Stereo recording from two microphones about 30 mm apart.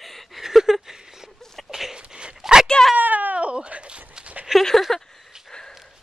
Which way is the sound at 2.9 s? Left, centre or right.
Right.